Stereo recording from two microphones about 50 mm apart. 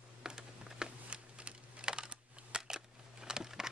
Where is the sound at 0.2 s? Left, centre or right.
Centre.